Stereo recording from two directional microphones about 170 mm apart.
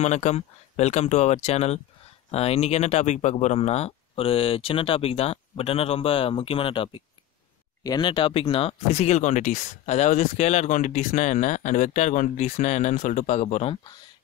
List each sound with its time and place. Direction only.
0.0 s speech: 40° left (ahead or behind)